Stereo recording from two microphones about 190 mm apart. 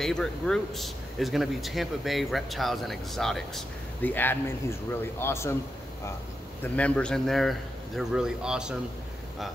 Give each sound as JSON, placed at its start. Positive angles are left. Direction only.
{"t": 0.0, "sound": "speech", "side_deg": 5}
{"t": 6.6, "sound": "speech", "side_deg": 5}